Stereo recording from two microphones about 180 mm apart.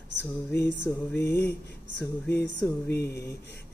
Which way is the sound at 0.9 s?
15° left (ahead or behind).